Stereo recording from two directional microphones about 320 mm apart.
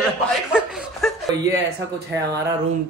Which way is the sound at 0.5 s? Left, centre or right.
Centre.